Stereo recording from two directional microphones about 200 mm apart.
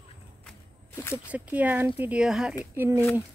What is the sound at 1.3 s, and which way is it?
Speech, 5° right (ahead or behind).